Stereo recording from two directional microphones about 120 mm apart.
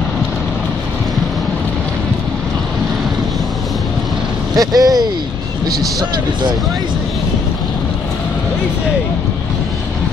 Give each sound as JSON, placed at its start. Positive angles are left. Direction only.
{"t": 4.6, "sound": "speech", "side_deg": -30}